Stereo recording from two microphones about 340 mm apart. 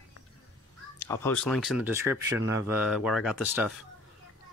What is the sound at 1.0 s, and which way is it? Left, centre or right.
Speech, centre.